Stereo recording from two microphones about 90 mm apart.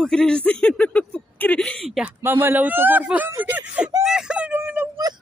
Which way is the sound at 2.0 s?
25° right (ahead or behind).